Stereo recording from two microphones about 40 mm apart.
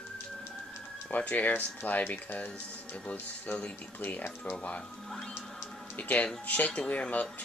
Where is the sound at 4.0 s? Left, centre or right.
Left.